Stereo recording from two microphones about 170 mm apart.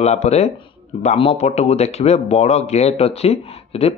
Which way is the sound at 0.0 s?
40° left (ahead or behind).